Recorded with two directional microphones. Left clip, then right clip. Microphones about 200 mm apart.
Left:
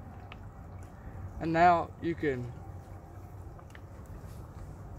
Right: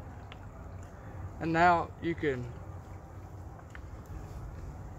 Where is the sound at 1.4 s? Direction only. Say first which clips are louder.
Left 1 dB; 25° left (ahead or behind).